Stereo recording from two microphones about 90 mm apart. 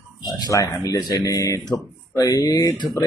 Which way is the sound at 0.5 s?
40° left (ahead or behind).